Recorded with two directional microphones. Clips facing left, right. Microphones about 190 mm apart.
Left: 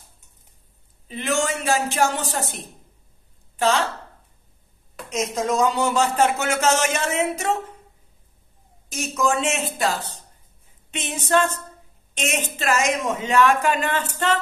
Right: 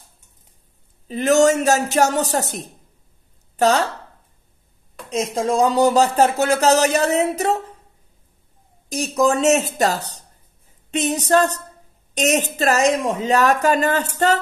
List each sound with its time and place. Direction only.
1.0 s speech: 40° right (ahead or behind)
5.1 s speech: 30° right (ahead or behind)
8.8 s speech: 35° right (ahead or behind)